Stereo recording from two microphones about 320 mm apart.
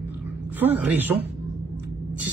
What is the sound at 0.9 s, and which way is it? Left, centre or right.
Speech, centre.